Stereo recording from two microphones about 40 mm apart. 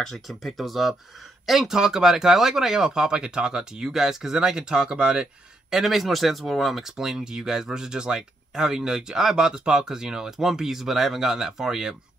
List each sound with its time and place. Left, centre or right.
0.0 s speech: centre
1.8 s speech: centre
5.7 s speech: centre